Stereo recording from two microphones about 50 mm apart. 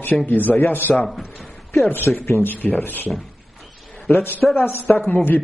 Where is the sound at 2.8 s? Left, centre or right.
Left.